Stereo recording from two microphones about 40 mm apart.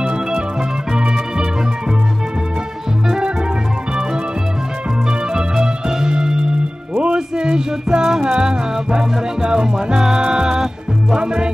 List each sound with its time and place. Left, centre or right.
0.0 s music: right
5.3 s music: centre